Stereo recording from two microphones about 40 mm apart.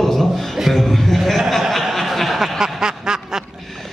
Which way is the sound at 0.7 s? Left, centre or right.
Centre.